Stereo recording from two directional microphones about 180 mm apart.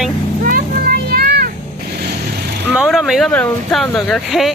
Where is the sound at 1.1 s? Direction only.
55° right (ahead or behind).